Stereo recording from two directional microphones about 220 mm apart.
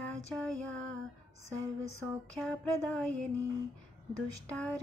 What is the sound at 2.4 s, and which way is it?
Music, 5° left (ahead or behind).